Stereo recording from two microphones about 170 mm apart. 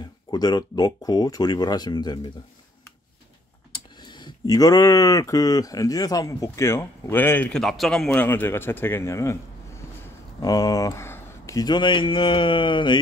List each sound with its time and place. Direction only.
0.0 s speech: 25° left (ahead or behind)
3.7 s speech: 25° left (ahead or behind)